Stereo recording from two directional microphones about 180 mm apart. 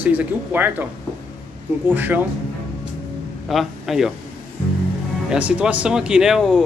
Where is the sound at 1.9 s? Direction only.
10° right (ahead or behind).